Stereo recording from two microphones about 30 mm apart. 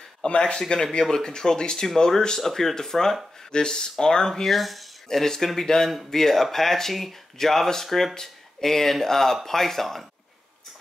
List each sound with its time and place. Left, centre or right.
0.2 s speech: left
0.6 s speech: left
4.3 s speech: centre
5.2 s speech: centre
6.1 s speech: centre